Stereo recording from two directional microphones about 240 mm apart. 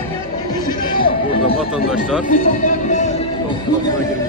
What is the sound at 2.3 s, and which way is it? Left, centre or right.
Speech, left.